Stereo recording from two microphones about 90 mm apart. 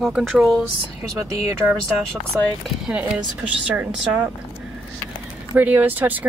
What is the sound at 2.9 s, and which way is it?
Speech, 15° right (ahead or behind).